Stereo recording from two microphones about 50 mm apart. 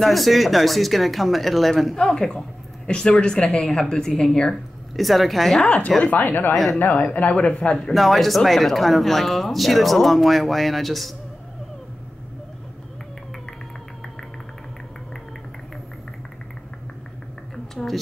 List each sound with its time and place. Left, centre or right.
0.0 s speech: centre
2.0 s speech: centre
4.9 s speech: centre
5.9 s speech: centre
6.1 s speech: left
6.5 s speech: centre
6.8 s speech: left
7.9 s speech: centre
17.7 s a woman's voice: centre